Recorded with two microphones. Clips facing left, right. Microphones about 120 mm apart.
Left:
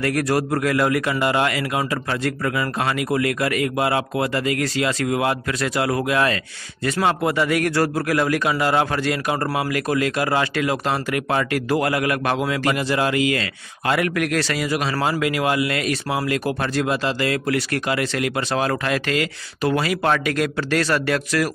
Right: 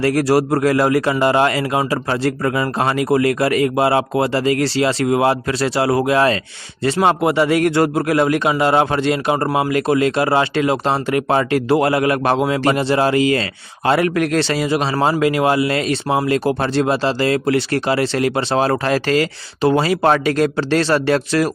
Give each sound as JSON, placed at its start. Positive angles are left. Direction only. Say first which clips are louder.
{"t": 0.0, "sound": "a man's voice", "louder": "right 6 dB", "side_deg": -30}